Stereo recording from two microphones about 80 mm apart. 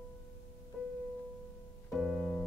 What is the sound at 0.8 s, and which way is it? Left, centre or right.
Music, centre.